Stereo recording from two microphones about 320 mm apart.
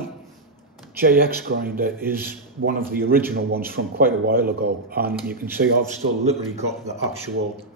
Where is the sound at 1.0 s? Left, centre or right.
Right.